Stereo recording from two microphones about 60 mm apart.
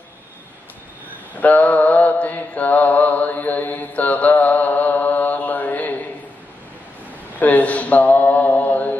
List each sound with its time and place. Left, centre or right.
1.4 s mantra: left
7.3 s mantra: left